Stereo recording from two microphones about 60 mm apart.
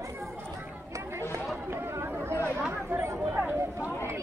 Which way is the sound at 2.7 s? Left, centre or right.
Right.